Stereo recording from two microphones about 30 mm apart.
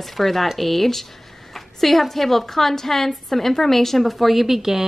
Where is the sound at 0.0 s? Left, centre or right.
Centre.